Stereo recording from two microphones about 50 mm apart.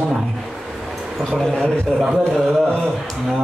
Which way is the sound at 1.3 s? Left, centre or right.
Centre.